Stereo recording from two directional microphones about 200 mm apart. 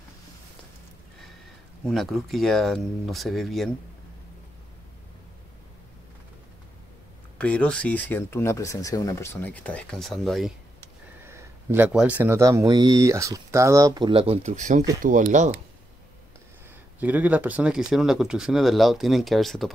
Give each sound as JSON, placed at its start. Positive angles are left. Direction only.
{"t": 1.9, "sound": "speech", "side_deg": 0}
{"t": 7.3, "sound": "speech", "side_deg": 5}
{"t": 11.2, "sound": "speech", "side_deg": -10}
{"t": 17.0, "sound": "speech", "side_deg": -10}